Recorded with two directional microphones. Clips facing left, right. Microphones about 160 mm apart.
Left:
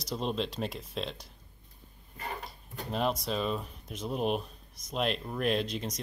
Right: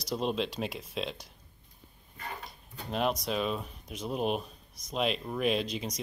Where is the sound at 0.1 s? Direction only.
5° right (ahead or behind).